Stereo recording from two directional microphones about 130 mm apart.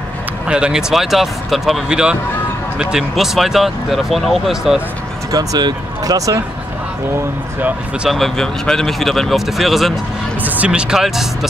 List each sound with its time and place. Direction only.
0.5 s speech: 5° right (ahead or behind)
5.3 s speech: 30° right (ahead or behind)
7.6 s speech: 5° right (ahead or behind)
10.4 s speech: 10° right (ahead or behind)